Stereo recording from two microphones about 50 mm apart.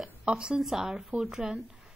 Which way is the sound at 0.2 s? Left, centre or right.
Centre.